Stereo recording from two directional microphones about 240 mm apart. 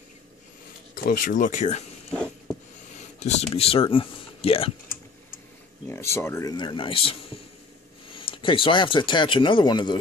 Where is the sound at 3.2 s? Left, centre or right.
Left.